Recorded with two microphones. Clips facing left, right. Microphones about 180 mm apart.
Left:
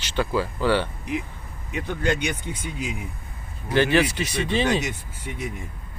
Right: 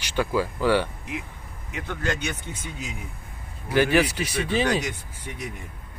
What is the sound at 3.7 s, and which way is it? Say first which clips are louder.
Speech: left 1 dB; 10° right (ahead or behind).